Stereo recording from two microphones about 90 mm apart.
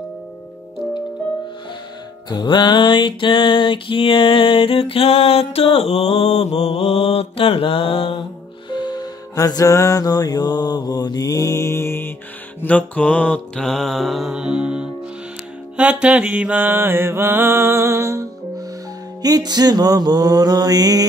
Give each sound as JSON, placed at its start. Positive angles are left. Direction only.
{"t": 2.2, "sound": "music", "side_deg": 55}
{"t": 7.3, "sound": "mantra", "side_deg": 90}
{"t": 8.6, "sound": "music", "side_deg": 55}
{"t": 12.6, "sound": "mantra", "side_deg": 15}
{"t": 19.2, "sound": "mantra", "side_deg": -50}